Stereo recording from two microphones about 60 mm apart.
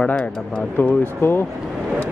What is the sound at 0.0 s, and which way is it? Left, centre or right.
Speech, centre.